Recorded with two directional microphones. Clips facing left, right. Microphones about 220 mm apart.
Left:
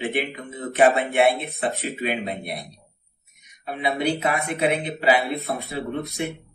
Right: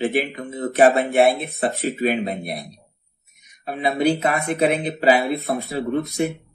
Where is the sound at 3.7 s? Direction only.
40° right (ahead or behind).